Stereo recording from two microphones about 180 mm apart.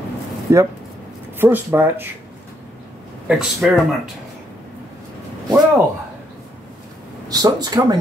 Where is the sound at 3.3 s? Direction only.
Centre (ahead or behind).